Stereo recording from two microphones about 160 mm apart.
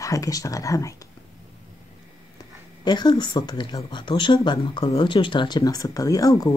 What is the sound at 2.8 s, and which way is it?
Speech, 25° left (ahead or behind).